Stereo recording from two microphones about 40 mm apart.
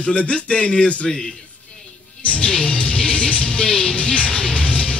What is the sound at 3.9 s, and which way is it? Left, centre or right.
Music, left.